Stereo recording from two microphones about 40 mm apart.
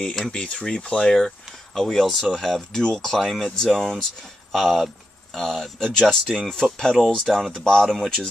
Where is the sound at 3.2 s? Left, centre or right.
Centre.